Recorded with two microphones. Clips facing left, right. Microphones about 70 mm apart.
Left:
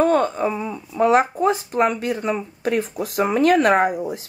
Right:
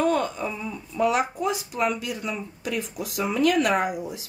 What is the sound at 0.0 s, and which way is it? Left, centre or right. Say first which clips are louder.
Speech: left 6 dB; left.